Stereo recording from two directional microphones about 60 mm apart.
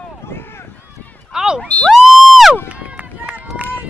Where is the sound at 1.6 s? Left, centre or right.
Left.